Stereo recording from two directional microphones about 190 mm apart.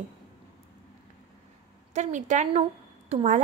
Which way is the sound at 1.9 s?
40° right (ahead or behind).